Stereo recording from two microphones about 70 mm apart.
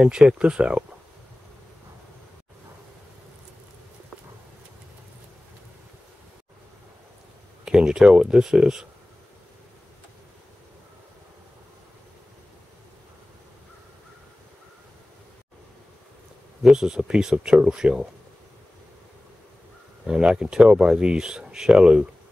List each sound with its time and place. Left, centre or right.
0.0 s speech: centre
7.6 s speech: centre
16.6 s speech: centre
20.1 s speech: centre